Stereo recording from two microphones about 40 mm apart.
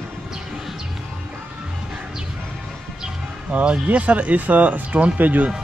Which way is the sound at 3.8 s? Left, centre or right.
Right.